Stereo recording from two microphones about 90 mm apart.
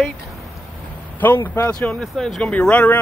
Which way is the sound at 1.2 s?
25° left (ahead or behind).